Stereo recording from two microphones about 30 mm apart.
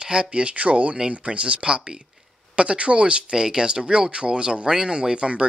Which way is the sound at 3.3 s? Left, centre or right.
Right.